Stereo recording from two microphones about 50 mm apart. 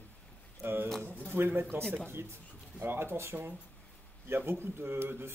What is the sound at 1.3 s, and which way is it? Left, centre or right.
A man's voice, right.